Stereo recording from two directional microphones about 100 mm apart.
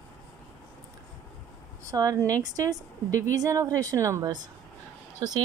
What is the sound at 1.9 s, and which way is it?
A woman's voice, 35° right (ahead or behind).